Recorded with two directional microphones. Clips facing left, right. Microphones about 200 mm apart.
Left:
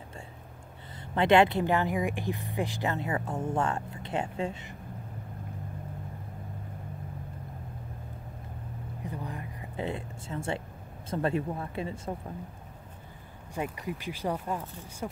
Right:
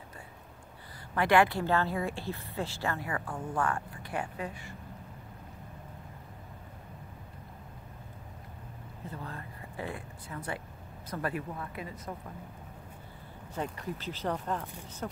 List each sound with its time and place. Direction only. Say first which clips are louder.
1.1 s speech: left 3 dB; 20° left (ahead or behind)
9.0 s a sound: left 3 dB; 15° left (ahead or behind)
11.1 s speech: left 6 dB; 25° left (ahead or behind)
13.6 s speech: left 2 dB; 10° left (ahead or behind)